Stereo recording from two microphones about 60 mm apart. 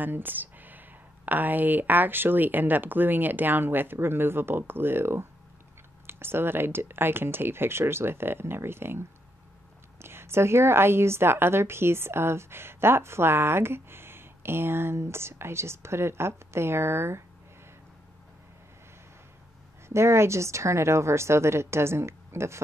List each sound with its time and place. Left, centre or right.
0.0 s a woman's voice: right
19.9 s a woman's voice: right